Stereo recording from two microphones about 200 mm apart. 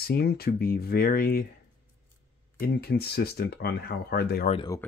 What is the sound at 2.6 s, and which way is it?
Speech, 50° left (ahead or behind).